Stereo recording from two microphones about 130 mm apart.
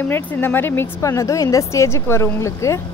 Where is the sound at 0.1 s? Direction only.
15° left (ahead or behind).